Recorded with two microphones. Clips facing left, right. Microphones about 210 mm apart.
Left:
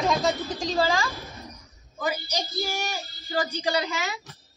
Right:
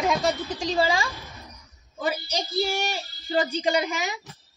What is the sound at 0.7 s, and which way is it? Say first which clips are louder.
Speech: right 1 dB; 15° right (ahead or behind).